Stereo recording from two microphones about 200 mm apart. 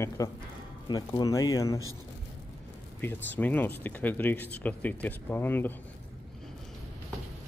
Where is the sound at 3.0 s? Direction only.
10° left (ahead or behind).